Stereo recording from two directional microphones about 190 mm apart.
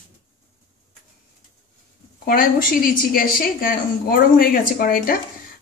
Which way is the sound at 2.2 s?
50° left (ahead or behind).